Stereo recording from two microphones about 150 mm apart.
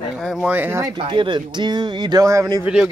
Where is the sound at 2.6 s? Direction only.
5° right (ahead or behind).